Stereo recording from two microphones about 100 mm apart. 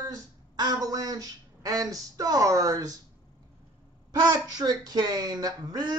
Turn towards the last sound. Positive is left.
turn(degrees=-40)  # may be behind; listen again after turning